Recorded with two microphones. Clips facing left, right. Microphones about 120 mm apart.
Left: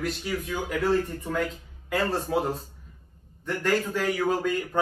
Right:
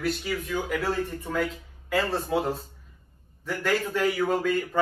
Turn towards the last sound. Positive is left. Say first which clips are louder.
# right 1 dB
turn(degrees=0)  # may be behind; listen again after turning